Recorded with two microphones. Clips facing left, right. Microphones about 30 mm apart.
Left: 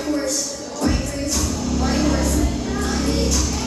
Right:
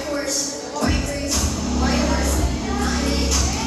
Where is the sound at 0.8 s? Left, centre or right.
Right.